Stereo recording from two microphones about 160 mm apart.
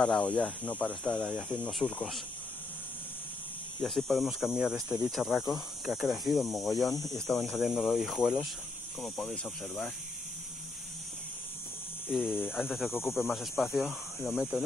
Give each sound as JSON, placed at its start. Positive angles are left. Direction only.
{"t": 0.0, "sound": "speech", "side_deg": 10}
{"t": 3.8, "sound": "speech", "side_deg": 0}
{"t": 12.2, "sound": "speech", "side_deg": 0}
{"t": 12.9, "sound": "speech", "side_deg": 15}
{"t": 13.2, "sound": "speech", "side_deg": 0}